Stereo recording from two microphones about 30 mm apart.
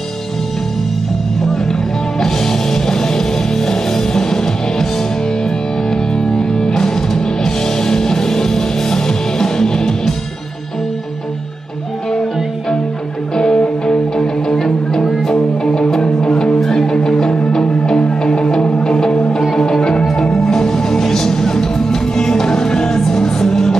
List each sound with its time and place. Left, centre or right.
1.4 s music: centre
5.9 s music: left
13.4 s music: left
19.5 s music: left